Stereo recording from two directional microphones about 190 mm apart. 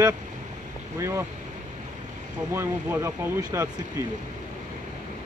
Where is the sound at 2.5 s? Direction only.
15° right (ahead or behind).